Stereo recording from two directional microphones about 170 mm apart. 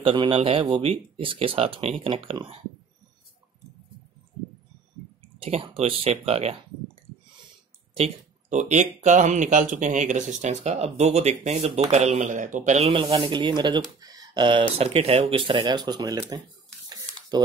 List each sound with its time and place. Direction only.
0.0 s speech: 30° right (ahead or behind)
5.4 s speech: 35° right (ahead or behind)
7.9 s speech: 40° right (ahead or behind)
13.9 s a sound: 20° right (ahead or behind)
14.8 s speech: 35° right (ahead or behind)